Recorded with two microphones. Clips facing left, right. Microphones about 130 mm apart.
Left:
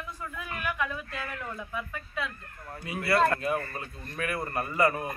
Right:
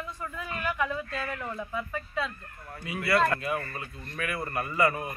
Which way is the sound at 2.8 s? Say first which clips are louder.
Even; 35° left (ahead or behind).